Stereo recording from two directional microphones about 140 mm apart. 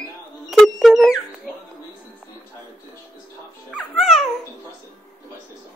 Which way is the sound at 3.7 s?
Centre (ahead or behind).